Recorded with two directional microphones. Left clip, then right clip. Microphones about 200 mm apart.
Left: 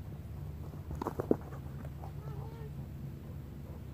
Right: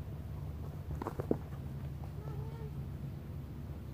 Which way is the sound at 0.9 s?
35° left (ahead or behind).